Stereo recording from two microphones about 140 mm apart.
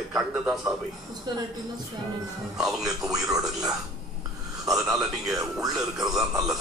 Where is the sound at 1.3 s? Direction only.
30° right (ahead or behind).